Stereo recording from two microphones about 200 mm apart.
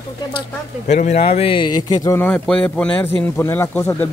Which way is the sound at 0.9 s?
35° left (ahead or behind).